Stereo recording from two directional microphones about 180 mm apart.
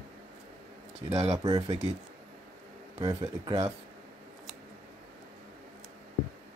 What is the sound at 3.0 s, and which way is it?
Speech, 25° right (ahead or behind).